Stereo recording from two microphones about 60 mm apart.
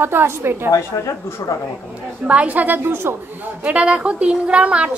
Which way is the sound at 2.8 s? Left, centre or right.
Right.